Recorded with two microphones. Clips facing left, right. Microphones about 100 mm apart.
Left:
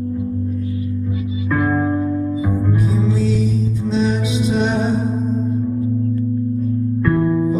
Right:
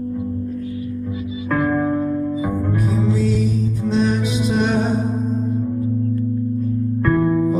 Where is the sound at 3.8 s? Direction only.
50° right (ahead or behind).